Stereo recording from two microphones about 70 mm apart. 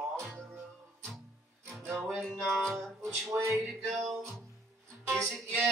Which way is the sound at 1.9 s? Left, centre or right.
Centre.